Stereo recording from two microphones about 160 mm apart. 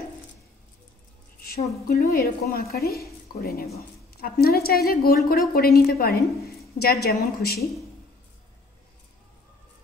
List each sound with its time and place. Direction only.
1.9 s a woman's voice: 70° left (ahead or behind)
6.4 s a sound: centre (ahead or behind)
6.8 s a woman's voice: 75° left (ahead or behind)